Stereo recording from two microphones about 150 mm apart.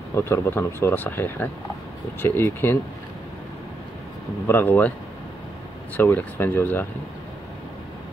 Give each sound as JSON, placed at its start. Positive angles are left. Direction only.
{"t": 0.1, "sound": "speech", "side_deg": 15}
{"t": 4.5, "sound": "speech", "side_deg": 15}
{"t": 5.9, "sound": "speech", "side_deg": 15}